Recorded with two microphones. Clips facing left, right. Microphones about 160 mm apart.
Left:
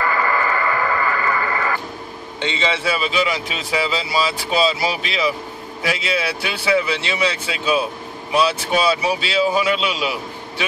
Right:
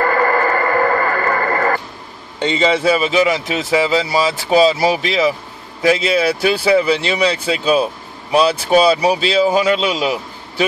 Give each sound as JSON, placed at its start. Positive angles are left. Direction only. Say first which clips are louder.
{"t": 0.0, "sound": "radio", "louder": "right 5 dB", "side_deg": -50}
{"t": 2.4, "sound": "speech", "louder": "right 7 dB", "side_deg": -40}